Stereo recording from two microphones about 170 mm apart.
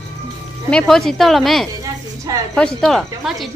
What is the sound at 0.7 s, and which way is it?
A woman's voice, 5° left (ahead or behind).